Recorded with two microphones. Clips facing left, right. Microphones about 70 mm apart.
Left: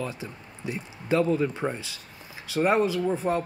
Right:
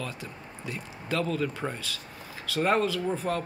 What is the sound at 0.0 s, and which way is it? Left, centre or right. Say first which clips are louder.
Speech: left 3 dB; left.